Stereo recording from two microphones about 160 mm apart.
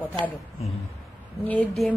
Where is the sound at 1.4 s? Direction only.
5° left (ahead or behind).